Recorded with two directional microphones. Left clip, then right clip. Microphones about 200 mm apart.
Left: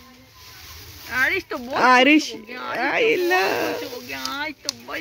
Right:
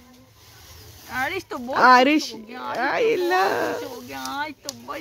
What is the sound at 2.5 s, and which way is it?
Speech, 50° right (ahead or behind).